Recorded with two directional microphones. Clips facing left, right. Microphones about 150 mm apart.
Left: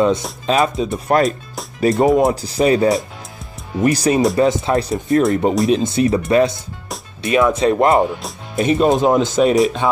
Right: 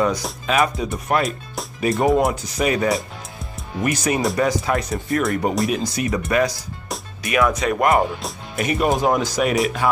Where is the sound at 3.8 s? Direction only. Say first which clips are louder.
Left 6 dB; 30° left (ahead or behind).